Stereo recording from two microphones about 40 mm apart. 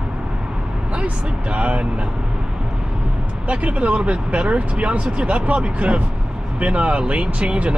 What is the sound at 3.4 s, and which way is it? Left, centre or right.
Speech, right.